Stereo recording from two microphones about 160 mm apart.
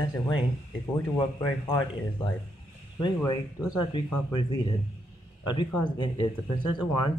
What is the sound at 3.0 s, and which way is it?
Speech, 25° left (ahead or behind).